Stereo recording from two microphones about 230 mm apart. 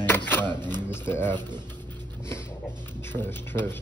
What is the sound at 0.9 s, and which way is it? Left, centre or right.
Speech, centre.